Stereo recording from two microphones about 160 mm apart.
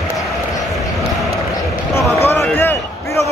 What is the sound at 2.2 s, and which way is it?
Basketball bounce, 15° left (ahead or behind).